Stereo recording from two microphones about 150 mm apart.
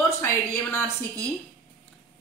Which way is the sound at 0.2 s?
15° left (ahead or behind).